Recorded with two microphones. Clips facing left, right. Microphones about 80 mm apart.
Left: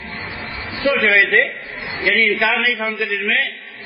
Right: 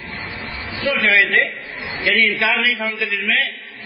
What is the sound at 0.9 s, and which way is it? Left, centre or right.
A man's voice, centre.